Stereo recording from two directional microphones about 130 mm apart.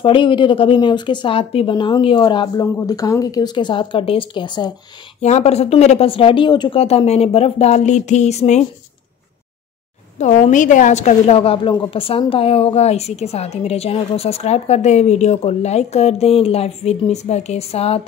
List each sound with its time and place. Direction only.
0.0 s speech: 40° left (ahead or behind)
5.2 s a woman's voice: 60° left (ahead or behind); by 6.8 s 35° left (ahead or behind)
6.8 s speech: 50° left (ahead or behind)
10.1 s a woman's voice: 65° left (ahead or behind)